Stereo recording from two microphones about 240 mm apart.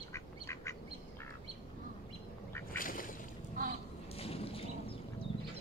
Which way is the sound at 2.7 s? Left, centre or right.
Left.